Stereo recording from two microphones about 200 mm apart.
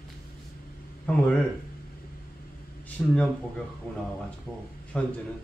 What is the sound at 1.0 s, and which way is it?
Speech, 5° left (ahead or behind).